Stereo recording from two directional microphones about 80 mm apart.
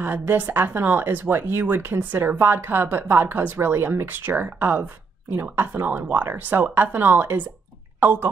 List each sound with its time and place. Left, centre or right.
0.0 s speech: right